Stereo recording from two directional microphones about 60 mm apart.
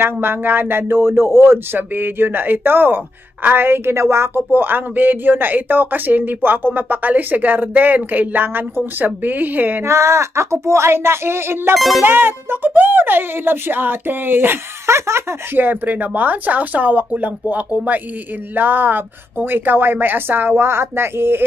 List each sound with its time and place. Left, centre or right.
0.0 s speech: right
4.5 s speech: right
9.8 s speech: right
11.7 s speech: centre
12.0 s speech: right
14.9 s speech: right